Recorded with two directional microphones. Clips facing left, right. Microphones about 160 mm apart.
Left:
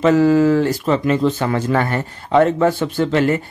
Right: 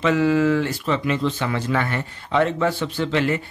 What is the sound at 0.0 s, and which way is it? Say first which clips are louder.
Speech: left 5 dB; 40° left (ahead or behind).